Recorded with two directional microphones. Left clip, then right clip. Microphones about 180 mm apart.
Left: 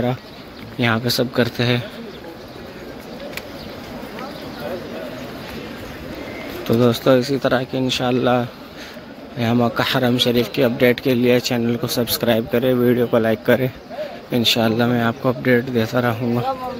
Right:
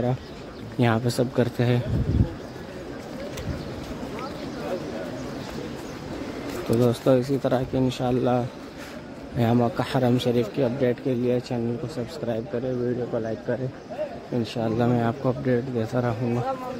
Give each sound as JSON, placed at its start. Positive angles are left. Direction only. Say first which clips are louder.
{"t": 0.7, "sound": "a man's voice", "louder": "left 5 dB", "side_deg": -15}
{"t": 6.8, "sound": "a man's voice", "louder": "left 6 dB", "side_deg": -5}
{"t": 13.1, "sound": "a man's voice", "louder": "left 11 dB", "side_deg": 20}
{"t": 14.3, "sound": "a man's voice", "louder": "left 11 dB", "side_deg": 5}